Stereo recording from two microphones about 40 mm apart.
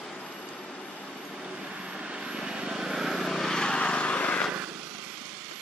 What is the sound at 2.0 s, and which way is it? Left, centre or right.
Vehicle, right.